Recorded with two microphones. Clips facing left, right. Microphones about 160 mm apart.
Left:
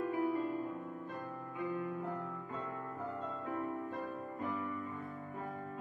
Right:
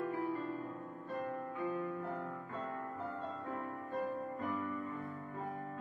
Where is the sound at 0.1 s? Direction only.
15° left (ahead or behind).